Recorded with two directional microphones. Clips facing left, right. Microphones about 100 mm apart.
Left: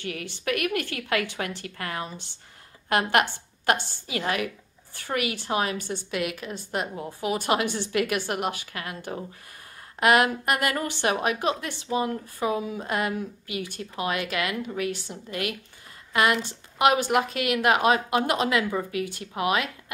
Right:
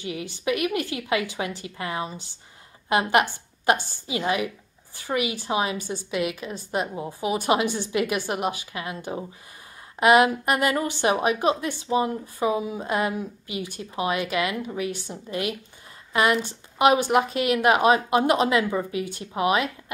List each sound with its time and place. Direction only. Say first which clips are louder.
0.0 s a woman's voice: right 3 dB; 15° right (ahead or behind)